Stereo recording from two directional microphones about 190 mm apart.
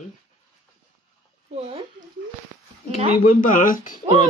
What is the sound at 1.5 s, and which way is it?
Speech, 30° right (ahead or behind).